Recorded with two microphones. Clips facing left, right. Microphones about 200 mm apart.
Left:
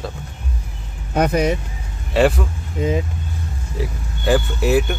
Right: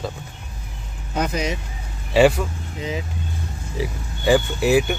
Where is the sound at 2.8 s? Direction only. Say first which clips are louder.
Left 8 dB; 50° left (ahead or behind).